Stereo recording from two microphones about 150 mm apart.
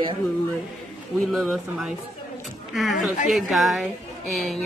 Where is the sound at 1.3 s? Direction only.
Centre (ahead or behind).